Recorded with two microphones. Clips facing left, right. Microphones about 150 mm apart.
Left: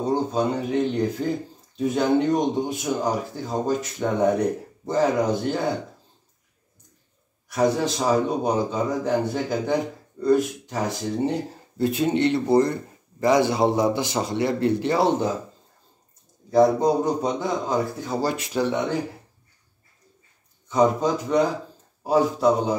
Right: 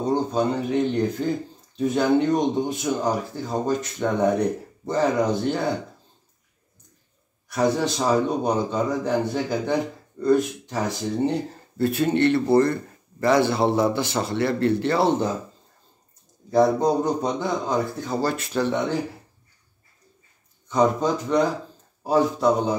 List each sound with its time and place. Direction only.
0.0 s speech: 5° left (ahead or behind)
7.5 s speech: centre (ahead or behind)
16.4 s speech: centre (ahead or behind)
20.6 s a man's voice: 5° left (ahead or behind)